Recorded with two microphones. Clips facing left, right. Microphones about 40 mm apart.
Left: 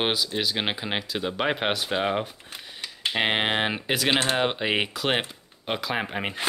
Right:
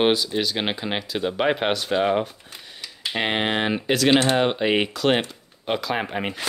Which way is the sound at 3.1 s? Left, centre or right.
Centre.